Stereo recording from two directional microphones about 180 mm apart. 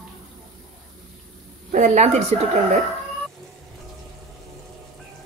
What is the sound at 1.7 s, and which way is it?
Speech, 40° right (ahead or behind).